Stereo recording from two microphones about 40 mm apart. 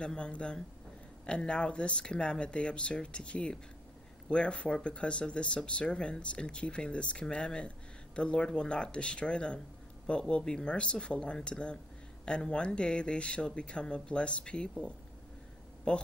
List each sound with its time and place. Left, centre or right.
0.0 s speech: left